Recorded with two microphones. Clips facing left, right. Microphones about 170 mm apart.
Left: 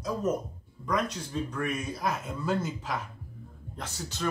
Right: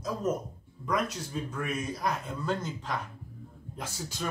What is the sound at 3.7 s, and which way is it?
Speech, 10° right (ahead or behind).